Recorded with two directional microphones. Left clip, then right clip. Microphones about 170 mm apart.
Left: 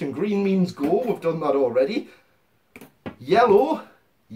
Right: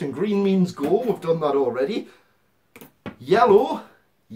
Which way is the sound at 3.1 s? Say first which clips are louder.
Right 1 dB; 20° right (ahead or behind).